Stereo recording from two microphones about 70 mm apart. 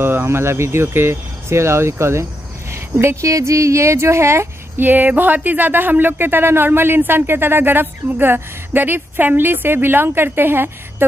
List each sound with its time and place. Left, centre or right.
0.0 s speech: right
4.8 s speech: right